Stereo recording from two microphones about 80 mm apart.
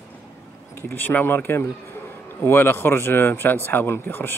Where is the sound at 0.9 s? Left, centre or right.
Left.